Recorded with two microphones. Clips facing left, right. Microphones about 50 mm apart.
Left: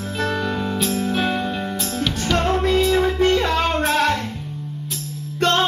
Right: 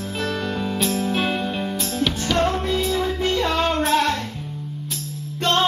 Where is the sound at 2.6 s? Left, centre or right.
Left.